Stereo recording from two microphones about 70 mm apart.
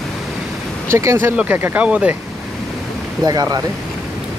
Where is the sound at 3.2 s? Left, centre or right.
Right.